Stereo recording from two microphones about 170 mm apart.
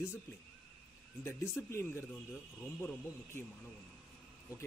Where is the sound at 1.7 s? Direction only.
15° left (ahead or behind).